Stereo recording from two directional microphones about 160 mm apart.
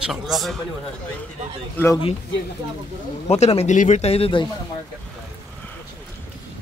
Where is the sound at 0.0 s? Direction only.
Centre (ahead or behind).